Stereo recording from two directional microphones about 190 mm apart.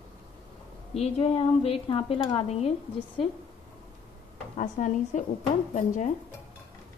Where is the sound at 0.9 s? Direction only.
30° left (ahead or behind).